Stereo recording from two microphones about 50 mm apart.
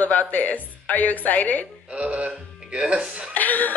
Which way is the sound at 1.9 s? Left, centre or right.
Right.